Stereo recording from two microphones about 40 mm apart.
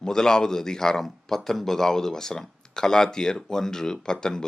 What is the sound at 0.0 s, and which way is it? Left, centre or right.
Speech, centre.